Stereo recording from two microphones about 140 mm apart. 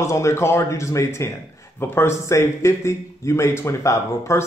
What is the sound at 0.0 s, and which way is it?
A man's voice, 20° left (ahead or behind).